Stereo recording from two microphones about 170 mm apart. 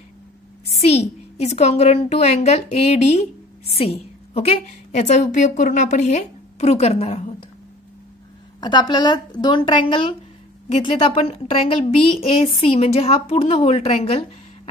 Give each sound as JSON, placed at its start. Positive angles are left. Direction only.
{"t": 0.7, "sound": "a woman's voice", "side_deg": 40}
{"t": 4.3, "sound": "a woman's voice", "side_deg": 35}
{"t": 8.5, "sound": "a woman's voice", "side_deg": 25}